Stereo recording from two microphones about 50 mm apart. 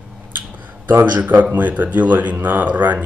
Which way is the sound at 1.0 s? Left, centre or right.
Right.